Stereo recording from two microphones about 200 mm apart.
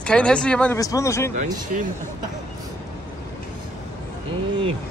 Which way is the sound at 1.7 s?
45° right (ahead or behind).